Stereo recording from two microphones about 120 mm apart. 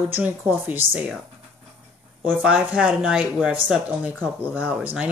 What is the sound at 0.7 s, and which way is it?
Speech, 5° right (ahead or behind).